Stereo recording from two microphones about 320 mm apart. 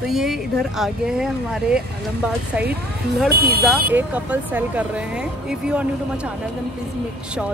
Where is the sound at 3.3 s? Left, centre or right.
Right.